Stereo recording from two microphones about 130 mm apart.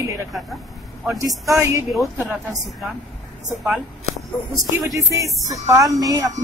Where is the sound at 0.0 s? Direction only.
25° right (ahead or behind).